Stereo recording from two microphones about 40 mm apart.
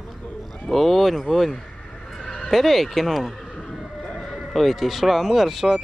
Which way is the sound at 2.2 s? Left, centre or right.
Left.